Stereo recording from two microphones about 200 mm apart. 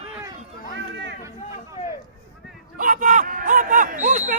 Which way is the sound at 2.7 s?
40° right (ahead or behind).